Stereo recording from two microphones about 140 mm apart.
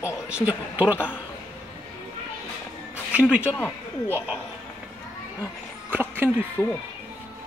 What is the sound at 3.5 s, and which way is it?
Speech, 15° left (ahead or behind).